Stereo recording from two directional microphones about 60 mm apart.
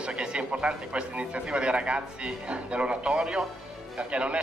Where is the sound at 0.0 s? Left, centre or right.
Centre.